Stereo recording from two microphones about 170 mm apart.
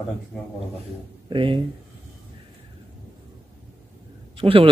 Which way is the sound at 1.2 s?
30° right (ahead or behind).